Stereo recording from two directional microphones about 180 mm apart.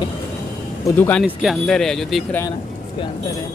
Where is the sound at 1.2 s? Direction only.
Centre (ahead or behind).